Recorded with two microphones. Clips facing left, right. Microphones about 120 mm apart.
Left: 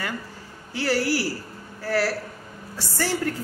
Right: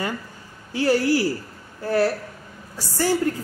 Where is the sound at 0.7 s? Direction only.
20° right (ahead or behind).